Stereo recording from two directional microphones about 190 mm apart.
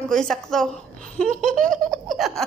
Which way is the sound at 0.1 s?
5° left (ahead or behind).